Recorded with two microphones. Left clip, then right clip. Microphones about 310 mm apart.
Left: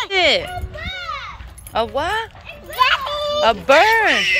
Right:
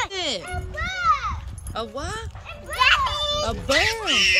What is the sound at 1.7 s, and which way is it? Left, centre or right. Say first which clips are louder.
Speech: left 11 dB; centre.